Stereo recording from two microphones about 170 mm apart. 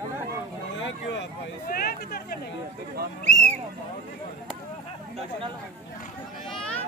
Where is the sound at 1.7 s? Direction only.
60° left (ahead or behind).